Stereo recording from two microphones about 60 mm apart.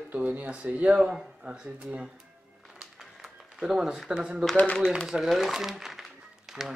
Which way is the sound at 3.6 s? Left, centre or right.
Centre.